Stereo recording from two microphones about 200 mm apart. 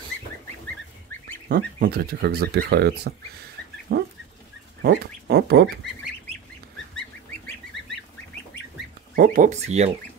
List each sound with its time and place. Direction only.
1.5 s speech: 50° right (ahead or behind)
3.9 s dog: 50° right (ahead or behind)
4.8 s speech: 55° right (ahead or behind)
9.1 s speech: 45° right (ahead or behind)